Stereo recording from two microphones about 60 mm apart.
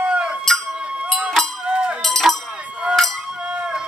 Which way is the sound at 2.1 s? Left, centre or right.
Centre.